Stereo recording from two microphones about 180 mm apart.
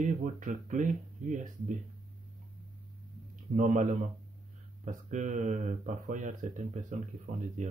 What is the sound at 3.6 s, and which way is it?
Speech, 45° right (ahead or behind).